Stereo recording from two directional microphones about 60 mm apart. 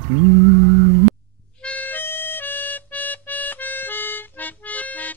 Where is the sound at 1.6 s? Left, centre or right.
Left.